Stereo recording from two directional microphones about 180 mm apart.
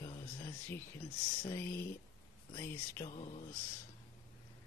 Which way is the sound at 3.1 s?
35° left (ahead or behind).